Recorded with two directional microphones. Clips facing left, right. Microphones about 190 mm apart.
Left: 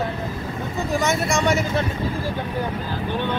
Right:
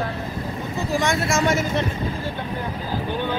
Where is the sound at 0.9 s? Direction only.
Centre (ahead or behind).